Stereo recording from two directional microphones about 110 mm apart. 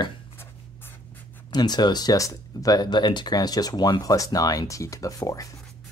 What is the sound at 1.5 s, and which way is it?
Speech, 40° left (ahead or behind).